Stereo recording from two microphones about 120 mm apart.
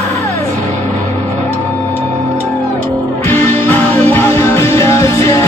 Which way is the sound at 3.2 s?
20° left (ahead or behind).